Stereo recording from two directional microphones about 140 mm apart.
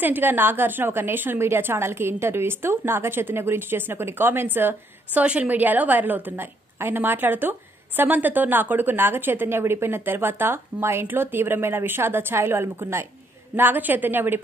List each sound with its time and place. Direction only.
0.0 s a woman's voice: 15° right (ahead or behind)